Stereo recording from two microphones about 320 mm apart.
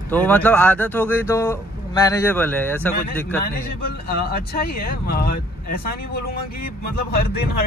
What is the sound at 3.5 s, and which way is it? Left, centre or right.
A man's voice, left.